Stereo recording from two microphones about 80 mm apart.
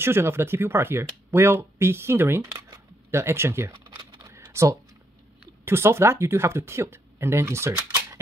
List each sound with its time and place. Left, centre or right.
0.0 s speech: right
3.7 s a sound: right
4.3 s typing: right
5.7 s speech: right
7.7 s computer keyboard: right